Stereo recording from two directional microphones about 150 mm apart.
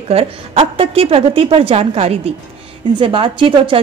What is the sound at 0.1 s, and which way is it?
A woman's voice, 40° right (ahead or behind).